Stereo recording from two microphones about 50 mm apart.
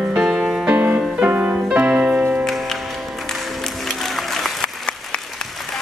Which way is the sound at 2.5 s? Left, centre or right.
Centre.